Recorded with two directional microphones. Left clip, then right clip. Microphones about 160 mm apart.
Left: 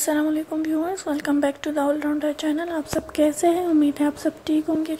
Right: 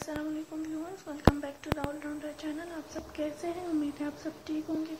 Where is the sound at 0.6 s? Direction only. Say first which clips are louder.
Left 14 dB; 55° left (ahead or behind).